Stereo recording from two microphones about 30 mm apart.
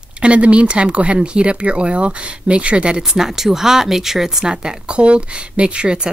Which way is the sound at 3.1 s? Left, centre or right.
Centre.